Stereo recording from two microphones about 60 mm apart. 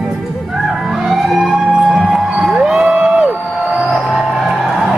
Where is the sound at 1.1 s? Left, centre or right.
Centre.